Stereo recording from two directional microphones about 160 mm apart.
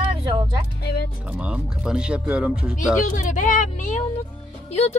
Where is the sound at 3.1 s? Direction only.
55° left (ahead or behind).